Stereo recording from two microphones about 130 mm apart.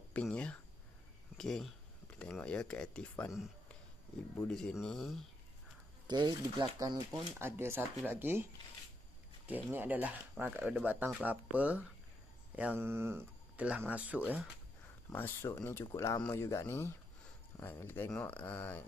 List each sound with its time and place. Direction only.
0.1 s speech: 10° left (ahead or behind)
4.5 s speech: 5° left (ahead or behind)
6.0 s speech: 35° right (ahead or behind)
7.3 s speech: 20° right (ahead or behind)
9.7 s speech: 15° right (ahead or behind)
15.0 s speech: 20° left (ahead or behind)